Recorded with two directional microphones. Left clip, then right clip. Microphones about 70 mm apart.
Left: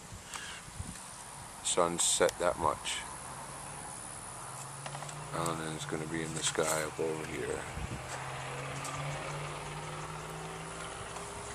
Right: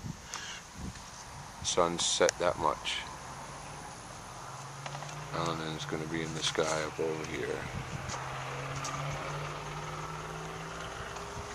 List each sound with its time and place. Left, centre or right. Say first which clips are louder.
1.7 s speech: right 1 dB; centre
5.3 s speech: right 1 dB; centre
7.0 s speech: right 1 dB; centre
8.2 s vehicle: right 2 dB; left